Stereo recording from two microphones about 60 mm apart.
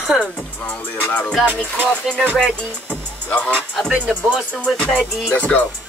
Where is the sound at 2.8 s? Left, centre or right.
Left.